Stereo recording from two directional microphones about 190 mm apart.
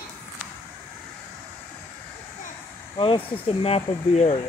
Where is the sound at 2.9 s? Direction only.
25° left (ahead or behind).